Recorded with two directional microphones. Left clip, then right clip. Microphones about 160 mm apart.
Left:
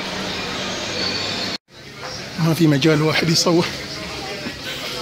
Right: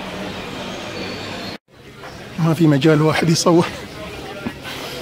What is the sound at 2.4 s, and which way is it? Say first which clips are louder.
Speech: right 2 dB; 5° right (ahead or behind).